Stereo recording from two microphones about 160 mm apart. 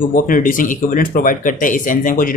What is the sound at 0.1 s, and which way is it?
Speech, 55° left (ahead or behind).